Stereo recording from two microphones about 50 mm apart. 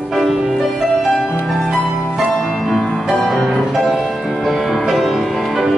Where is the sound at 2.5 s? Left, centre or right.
Centre.